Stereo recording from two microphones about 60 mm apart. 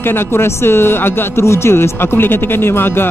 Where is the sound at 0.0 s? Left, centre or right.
Left.